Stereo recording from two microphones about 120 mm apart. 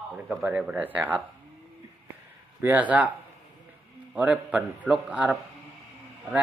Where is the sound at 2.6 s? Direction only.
15° right (ahead or behind).